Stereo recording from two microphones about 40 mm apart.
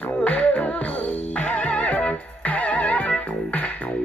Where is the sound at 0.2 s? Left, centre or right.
Left.